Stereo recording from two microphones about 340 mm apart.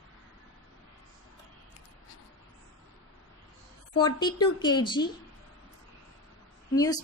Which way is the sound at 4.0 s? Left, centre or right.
Centre.